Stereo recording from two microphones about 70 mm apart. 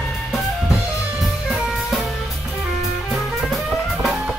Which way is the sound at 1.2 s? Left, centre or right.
Centre.